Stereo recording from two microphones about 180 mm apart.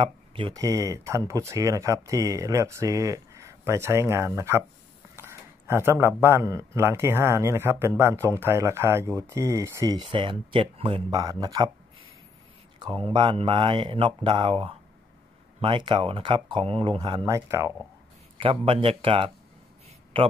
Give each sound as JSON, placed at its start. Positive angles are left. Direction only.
{"t": 0.0, "sound": "speech", "side_deg": -30}
{"t": 0.7, "sound": "a man's voice", "side_deg": -20}
{"t": 12.7, "sound": "speech", "side_deg": -25}
{"t": 18.4, "sound": "a man's voice", "side_deg": -30}